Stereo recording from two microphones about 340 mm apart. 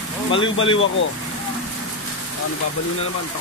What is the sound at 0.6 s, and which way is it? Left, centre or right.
Speech, left.